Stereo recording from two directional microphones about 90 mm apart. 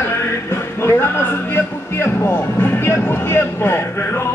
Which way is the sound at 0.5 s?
30° left (ahead or behind).